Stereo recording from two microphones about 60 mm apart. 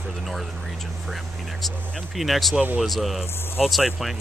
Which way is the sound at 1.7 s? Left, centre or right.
Centre.